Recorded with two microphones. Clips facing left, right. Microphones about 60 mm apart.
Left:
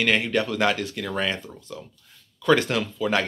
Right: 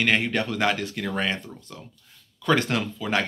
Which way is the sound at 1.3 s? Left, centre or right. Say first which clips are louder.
Left 1 dB; right.